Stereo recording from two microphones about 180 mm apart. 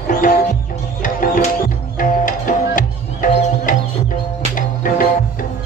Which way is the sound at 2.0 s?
50° left (ahead or behind).